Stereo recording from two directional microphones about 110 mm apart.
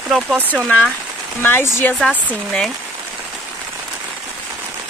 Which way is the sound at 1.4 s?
20° left (ahead or behind).